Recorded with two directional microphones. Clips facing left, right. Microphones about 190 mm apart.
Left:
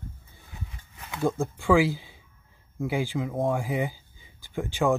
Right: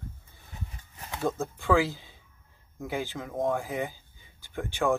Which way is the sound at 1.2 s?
10° left (ahead or behind).